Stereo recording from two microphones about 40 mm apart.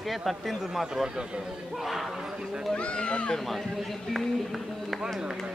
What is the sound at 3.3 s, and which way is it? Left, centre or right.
Speech, centre.